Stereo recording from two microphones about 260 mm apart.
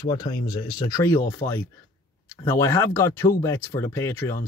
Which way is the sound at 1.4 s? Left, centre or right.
Left.